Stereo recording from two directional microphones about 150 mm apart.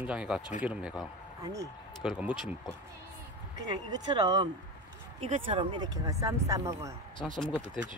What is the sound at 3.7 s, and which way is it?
Speech, 30° right (ahead or behind).